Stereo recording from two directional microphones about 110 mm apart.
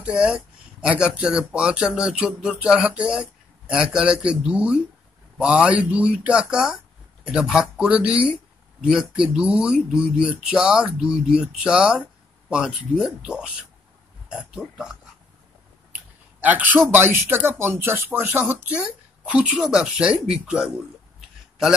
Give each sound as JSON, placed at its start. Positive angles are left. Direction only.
{"t": 0.0, "sound": "speech", "side_deg": -10}
{"t": 16.3, "sound": "speech", "side_deg": -15}